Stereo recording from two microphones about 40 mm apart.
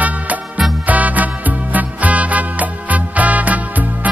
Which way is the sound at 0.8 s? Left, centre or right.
Right.